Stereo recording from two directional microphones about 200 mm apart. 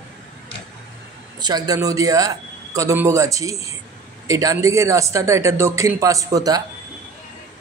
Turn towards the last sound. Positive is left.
turn(degrees=-20)  # may be behind; listen again after turning